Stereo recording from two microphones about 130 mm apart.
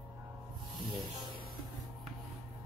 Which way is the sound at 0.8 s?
35° right (ahead or behind).